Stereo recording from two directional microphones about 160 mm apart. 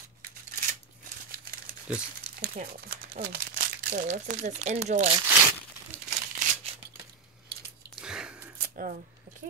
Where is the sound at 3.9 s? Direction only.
45° right (ahead or behind).